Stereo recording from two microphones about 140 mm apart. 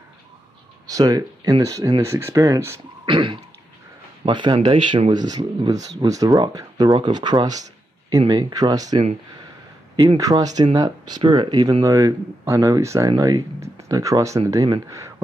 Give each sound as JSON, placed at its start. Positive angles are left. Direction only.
{"t": 0.8, "sound": "speech", "side_deg": -25}
{"t": 3.1, "sound": "throat clearing", "side_deg": -35}
{"t": 4.2, "sound": "speech", "side_deg": -35}